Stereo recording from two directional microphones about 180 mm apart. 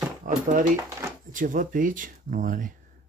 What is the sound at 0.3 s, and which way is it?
Speech, 45° right (ahead or behind).